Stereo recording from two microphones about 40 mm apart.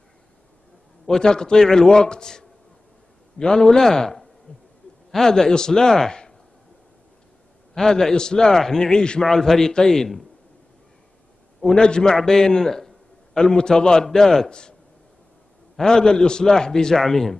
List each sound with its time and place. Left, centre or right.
1.0 s a man's voice: centre
4.5 s owl: left
5.1 s a man's voice: centre
7.7 s a man's voice: centre
9.2 s a man's voice: centre
11.6 s a man's voice: centre
12.2 s a sound: centre
13.4 s a man's voice: centre
15.8 s a man's voice: centre